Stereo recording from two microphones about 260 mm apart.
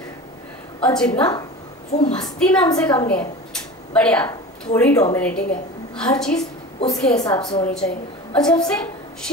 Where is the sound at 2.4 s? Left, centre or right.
Centre.